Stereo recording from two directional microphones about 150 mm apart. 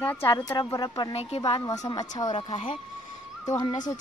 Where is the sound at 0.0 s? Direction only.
10° left (ahead or behind).